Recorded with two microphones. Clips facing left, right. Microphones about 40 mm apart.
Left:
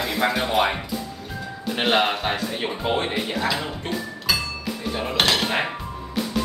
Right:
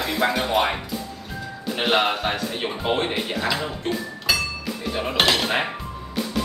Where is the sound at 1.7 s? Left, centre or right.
Centre.